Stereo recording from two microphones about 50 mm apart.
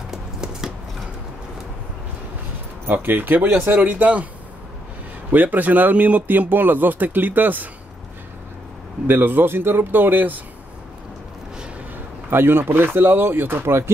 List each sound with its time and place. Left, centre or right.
0.1 s a sound: centre
2.9 s speech: right
5.3 s speech: right
9.0 s speech: right
12.3 s speech: right